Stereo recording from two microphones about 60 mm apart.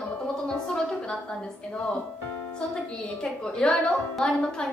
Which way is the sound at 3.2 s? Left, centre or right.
Centre.